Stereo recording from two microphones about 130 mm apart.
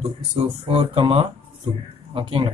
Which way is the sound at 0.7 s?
45° right (ahead or behind).